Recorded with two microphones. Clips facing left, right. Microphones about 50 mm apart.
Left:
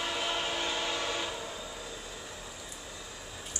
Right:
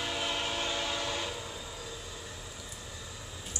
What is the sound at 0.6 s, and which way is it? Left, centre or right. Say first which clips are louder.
Train: left 1 dB; centre.